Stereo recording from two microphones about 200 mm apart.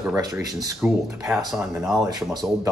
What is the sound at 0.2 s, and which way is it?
Speech, 20° right (ahead or behind).